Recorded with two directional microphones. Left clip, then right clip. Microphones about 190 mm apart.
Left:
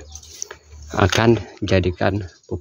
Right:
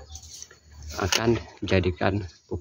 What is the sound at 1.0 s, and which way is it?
Speech, 45° left (ahead or behind).